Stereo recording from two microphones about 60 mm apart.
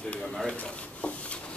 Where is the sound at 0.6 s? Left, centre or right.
Left.